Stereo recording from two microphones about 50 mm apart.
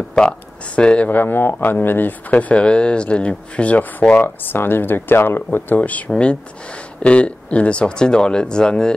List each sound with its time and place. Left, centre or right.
0.2 s speech: centre
1.1 s speech: left
2.3 s speech: left
5.7 s speech: left; by 8.9 s centre